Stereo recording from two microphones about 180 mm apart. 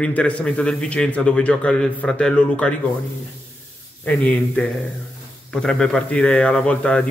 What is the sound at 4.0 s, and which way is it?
A man's voice, 10° left (ahead or behind).